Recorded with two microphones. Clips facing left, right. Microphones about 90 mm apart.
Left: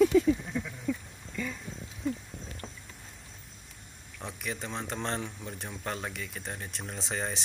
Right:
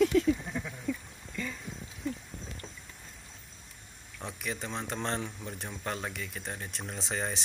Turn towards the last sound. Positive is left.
turn(degrees=0)  # may be behind; listen again after turning